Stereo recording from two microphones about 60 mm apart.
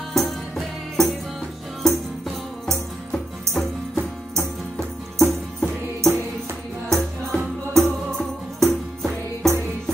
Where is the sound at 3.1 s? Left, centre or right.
Centre.